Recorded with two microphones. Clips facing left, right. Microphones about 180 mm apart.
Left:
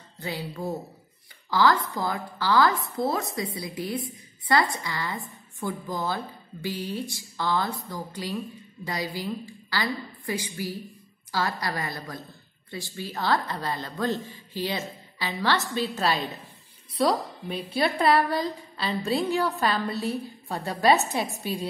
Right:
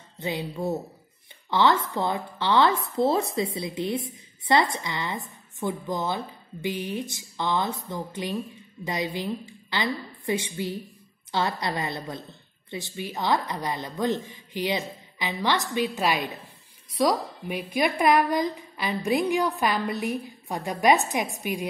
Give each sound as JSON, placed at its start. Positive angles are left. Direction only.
{"t": 0.2, "sound": "speech", "side_deg": -20}
{"t": 1.5, "sound": "a woman's voice", "side_deg": -25}